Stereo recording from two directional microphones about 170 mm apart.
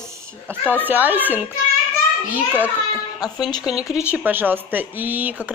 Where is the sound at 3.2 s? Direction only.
25° left (ahead or behind).